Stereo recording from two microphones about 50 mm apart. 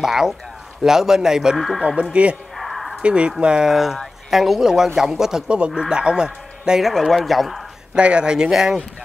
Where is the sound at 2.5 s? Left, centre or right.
Centre.